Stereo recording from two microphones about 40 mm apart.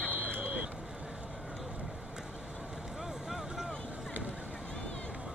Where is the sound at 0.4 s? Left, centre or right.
Right.